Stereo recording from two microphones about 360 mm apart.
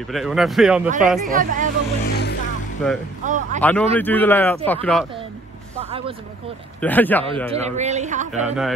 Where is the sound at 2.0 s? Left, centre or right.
Left.